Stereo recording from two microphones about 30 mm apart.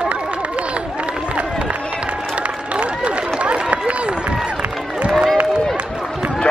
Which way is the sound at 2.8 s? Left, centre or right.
Right.